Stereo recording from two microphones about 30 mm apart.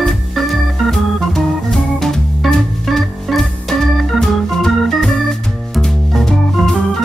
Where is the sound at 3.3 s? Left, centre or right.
Centre.